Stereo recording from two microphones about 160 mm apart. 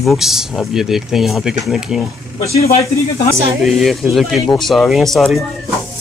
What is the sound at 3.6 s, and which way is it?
Speech, centre (ahead or behind).